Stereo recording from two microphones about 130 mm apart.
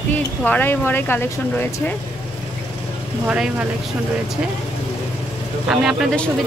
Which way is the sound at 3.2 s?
10° right (ahead or behind).